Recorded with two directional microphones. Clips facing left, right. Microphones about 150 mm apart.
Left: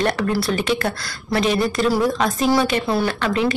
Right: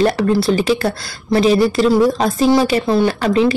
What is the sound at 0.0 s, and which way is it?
Speech, 30° right (ahead or behind).